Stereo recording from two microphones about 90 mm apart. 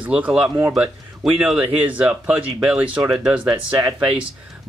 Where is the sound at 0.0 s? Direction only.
15° right (ahead or behind).